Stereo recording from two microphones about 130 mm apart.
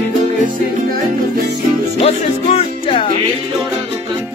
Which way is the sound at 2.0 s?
50° left (ahead or behind).